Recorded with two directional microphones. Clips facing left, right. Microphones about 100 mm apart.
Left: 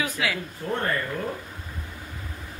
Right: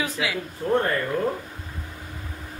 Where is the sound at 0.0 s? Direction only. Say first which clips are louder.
Right 1 dB; 20° right (ahead or behind).